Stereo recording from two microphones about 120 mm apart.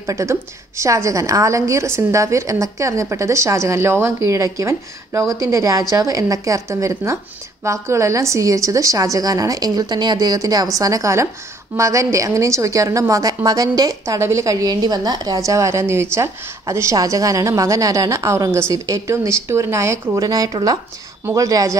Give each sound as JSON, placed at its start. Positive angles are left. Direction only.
{"t": 0.0, "sound": "a woman's voice", "side_deg": -25}